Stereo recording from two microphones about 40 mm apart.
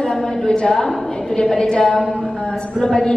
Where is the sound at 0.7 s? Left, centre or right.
Centre.